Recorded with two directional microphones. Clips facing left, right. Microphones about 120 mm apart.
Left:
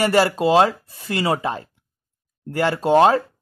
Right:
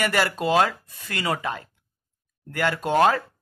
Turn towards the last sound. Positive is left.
turn(degrees=30)  # may be behind; listen again after turning